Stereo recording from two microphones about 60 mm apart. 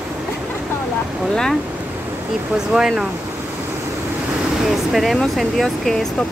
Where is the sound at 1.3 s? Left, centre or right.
Centre.